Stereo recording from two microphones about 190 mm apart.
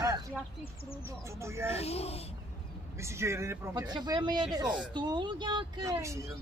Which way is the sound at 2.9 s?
15° right (ahead or behind).